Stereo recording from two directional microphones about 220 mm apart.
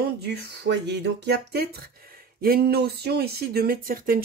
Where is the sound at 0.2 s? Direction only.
50° right (ahead or behind).